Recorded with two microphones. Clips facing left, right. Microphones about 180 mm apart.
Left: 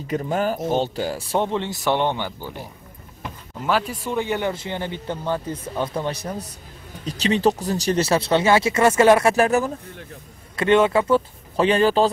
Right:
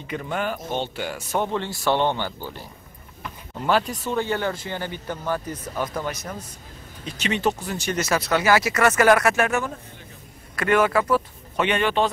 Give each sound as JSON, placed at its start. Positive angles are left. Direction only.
{"t": 0.0, "sound": "speech", "side_deg": 40}
{"t": 1.5, "sound": "speech", "side_deg": 20}
{"t": 3.6, "sound": "speech", "side_deg": 5}
{"t": 10.5, "sound": "speech", "side_deg": 25}